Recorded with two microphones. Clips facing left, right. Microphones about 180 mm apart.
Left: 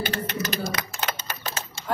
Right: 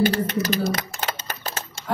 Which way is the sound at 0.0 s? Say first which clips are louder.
Right 8 dB; 40° right (ahead or behind).